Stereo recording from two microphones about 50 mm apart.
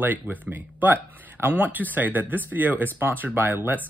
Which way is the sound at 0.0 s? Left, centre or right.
Right.